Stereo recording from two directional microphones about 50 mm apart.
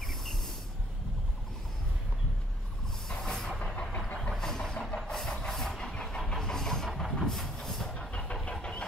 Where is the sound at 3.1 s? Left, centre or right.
Centre.